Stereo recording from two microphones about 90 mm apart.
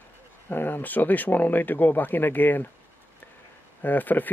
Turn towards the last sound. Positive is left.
turn(degrees=20)  # may be behind; listen again after turning